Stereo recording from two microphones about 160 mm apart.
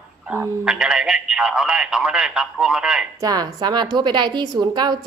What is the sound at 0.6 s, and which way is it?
Speech, 5° right (ahead or behind).